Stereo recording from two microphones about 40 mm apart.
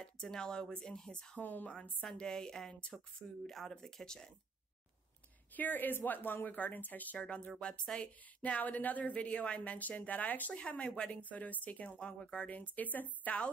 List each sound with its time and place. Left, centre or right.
0.0 s speech: centre
1.4 s speech: left
2.1 s speech: centre
5.5 s speech: left
7.2 s a woman's voice: left
12.0 s speech: left
12.7 s speech: left